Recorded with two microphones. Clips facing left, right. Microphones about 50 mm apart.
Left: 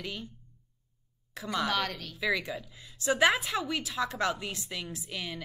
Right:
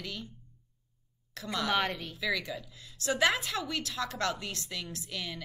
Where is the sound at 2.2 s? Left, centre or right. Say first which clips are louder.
Left 4 dB; left.